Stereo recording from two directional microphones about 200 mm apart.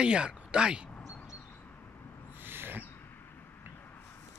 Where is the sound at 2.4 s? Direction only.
10° right (ahead or behind).